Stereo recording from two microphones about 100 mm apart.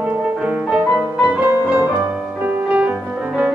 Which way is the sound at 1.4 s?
10° right (ahead or behind).